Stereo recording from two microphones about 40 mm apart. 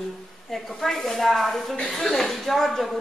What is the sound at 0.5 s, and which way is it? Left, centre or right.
A woman's voice, centre.